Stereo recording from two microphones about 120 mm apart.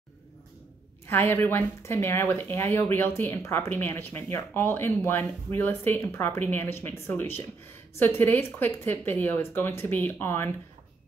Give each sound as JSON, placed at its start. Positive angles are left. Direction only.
{"t": 1.0, "sound": "speech", "side_deg": 20}